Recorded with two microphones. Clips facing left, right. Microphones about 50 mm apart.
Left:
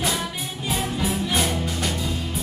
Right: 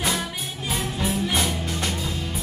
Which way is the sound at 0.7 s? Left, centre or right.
Centre.